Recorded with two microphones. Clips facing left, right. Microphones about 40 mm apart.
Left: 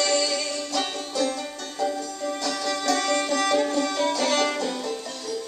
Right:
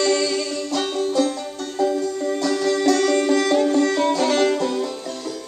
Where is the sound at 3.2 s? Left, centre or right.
Right.